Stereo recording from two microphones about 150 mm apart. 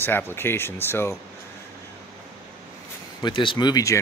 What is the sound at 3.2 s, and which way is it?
Speech, 30° left (ahead or behind).